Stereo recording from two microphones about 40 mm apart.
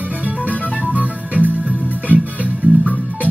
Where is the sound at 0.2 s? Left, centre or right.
Right.